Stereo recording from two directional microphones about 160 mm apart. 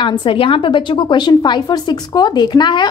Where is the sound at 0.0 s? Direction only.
30° left (ahead or behind).